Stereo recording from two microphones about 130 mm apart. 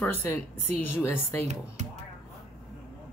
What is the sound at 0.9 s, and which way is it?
Speech, 15° left (ahead or behind).